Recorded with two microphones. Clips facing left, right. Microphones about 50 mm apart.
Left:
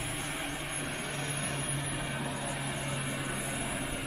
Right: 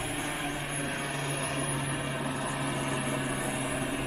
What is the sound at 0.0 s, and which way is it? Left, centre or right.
Vehicle, centre.